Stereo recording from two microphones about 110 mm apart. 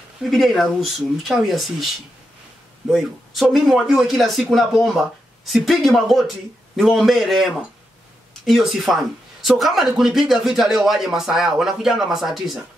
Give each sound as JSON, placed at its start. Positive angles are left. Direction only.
{"t": 0.2, "sound": "speech", "side_deg": 0}
{"t": 2.9, "sound": "speech", "side_deg": 0}